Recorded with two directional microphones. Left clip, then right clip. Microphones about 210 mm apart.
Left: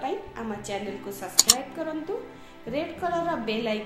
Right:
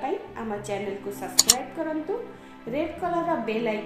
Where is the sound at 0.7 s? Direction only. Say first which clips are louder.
Right 1 dB; 30° left (ahead or behind).